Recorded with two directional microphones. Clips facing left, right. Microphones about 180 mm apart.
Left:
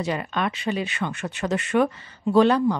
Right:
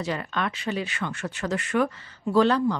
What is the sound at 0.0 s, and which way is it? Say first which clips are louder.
Speech: left 3 dB; 15° left (ahead or behind).